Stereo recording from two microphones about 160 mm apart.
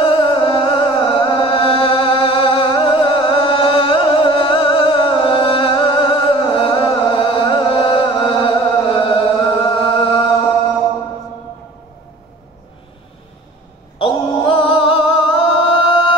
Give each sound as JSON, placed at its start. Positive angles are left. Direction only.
{"t": 0.0, "sound": "music", "side_deg": 35}
{"t": 13.9, "sound": "music", "side_deg": 30}